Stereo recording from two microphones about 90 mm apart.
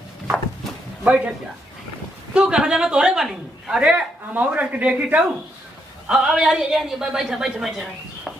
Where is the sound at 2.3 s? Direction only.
10° right (ahead or behind).